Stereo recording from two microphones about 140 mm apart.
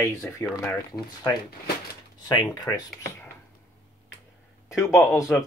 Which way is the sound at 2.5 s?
25° left (ahead or behind).